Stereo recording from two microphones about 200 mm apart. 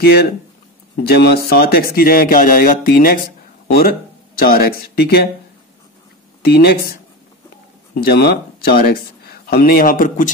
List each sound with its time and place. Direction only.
0.0 s speech: 50° left (ahead or behind)
4.4 s speech: 50° left (ahead or behind)
6.4 s speech: 50° left (ahead or behind)
7.9 s speech: 50° left (ahead or behind)